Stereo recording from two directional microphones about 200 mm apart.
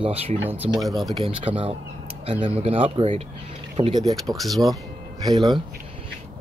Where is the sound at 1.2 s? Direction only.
25° right (ahead or behind).